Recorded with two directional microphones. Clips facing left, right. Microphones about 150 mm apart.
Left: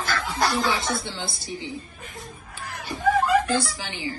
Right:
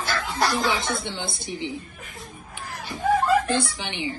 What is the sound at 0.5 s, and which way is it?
A woman's voice, 20° right (ahead or behind).